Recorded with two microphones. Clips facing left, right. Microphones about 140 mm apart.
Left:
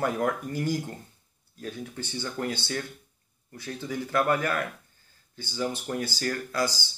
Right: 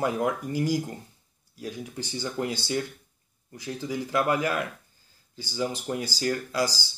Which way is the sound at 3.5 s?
10° right (ahead or behind).